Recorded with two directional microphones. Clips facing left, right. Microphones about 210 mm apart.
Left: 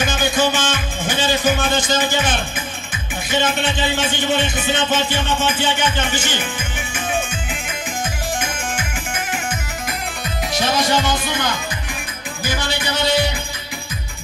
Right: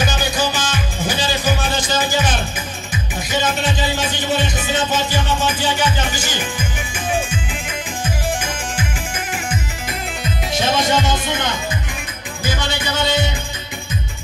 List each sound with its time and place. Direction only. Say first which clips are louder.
0.0 s music: left 2 dB; 35° right (ahead or behind)
3.3 s speech: left 1 dB; 40° right (ahead or behind)
8.4 s music: even; 35° right (ahead or behind)
10.5 s speech: right 1 dB; 25° right (ahead or behind)